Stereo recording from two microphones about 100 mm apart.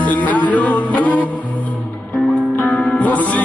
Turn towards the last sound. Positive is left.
turn(degrees=15)  # may be behind; listen again after turning